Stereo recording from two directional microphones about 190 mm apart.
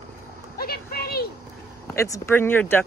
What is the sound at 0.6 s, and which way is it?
Speech, 50° left (ahead or behind).